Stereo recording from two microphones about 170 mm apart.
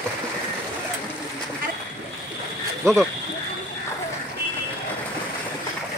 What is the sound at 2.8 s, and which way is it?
Speech, 15° right (ahead or behind).